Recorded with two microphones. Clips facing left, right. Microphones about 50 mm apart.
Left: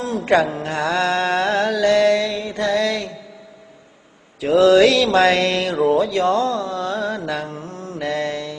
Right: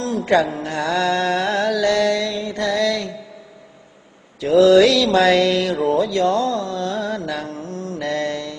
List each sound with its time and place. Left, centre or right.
0.1 s mantra: left
4.5 s mantra: left